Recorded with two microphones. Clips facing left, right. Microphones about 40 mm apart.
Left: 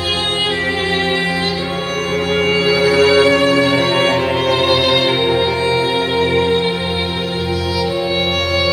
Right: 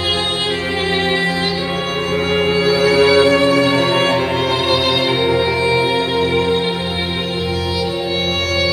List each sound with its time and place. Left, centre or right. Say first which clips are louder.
2.7 s music: even; left